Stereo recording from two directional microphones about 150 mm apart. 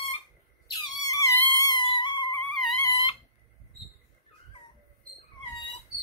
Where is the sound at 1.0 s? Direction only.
25° left (ahead or behind).